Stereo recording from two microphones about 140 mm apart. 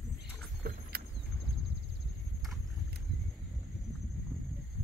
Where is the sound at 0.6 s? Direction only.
90° right.